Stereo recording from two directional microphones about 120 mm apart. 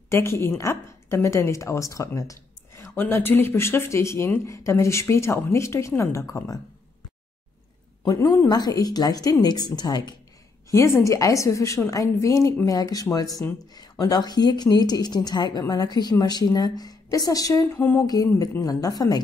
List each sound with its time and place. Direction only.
0.1 s a woman's voice: 20° left (ahead or behind)
8.0 s a woman's voice: 30° left (ahead or behind)
17.7 s a sound: 15° left (ahead or behind)
18.0 s speech: 35° left (ahead or behind)